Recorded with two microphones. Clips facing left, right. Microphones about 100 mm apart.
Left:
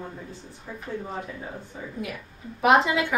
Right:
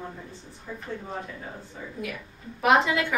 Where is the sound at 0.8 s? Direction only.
5° left (ahead or behind).